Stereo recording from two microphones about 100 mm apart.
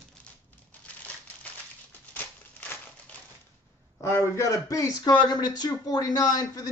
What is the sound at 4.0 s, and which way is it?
A man's voice, 25° left (ahead or behind).